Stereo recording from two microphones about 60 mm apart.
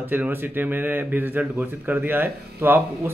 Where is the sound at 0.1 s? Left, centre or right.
Right.